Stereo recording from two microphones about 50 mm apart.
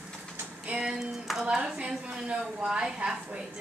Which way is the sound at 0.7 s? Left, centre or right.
Centre.